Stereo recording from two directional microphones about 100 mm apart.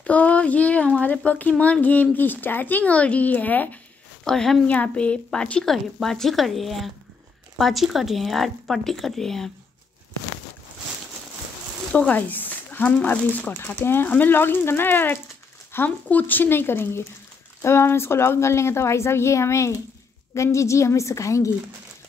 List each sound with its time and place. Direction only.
0.0 s speech: 15° left (ahead or behind)
4.2 s speech: 5° left (ahead or behind)
4.6 s a woman's voice: 15° left (ahead or behind)
11.9 s a woman's voice: 15° left (ahead or behind); by 21.5 s 30° left (ahead or behind)